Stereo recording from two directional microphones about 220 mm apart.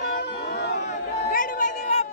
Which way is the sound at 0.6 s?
45° left (ahead or behind).